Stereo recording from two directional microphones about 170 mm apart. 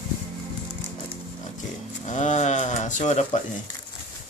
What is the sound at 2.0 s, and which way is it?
Speech, 45° left (ahead or behind).